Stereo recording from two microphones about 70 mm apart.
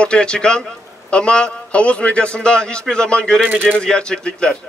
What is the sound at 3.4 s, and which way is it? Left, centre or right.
Speech, right.